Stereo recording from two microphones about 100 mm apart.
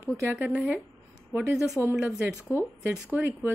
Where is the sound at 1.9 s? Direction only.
10° right (ahead or behind).